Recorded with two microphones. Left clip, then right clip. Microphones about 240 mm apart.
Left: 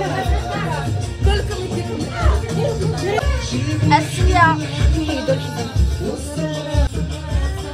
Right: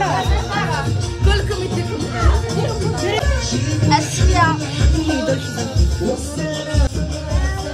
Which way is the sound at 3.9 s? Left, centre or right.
Centre.